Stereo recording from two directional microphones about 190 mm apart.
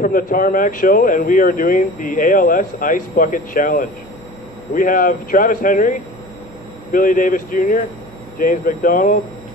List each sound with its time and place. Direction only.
0.0 s speech: 45° left (ahead or behind)